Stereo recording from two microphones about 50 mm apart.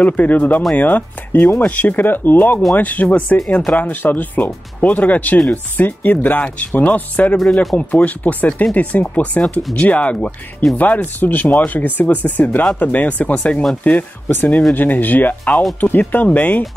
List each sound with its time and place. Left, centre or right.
0.0 s speech: left